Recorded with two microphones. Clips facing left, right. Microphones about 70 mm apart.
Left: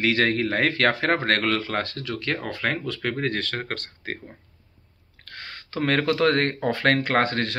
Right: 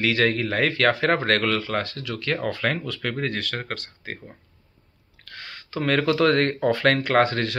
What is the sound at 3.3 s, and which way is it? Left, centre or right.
Speech, left.